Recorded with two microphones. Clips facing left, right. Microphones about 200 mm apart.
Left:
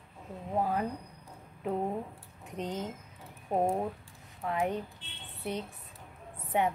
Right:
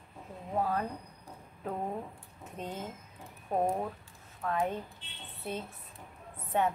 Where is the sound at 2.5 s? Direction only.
15° left (ahead or behind).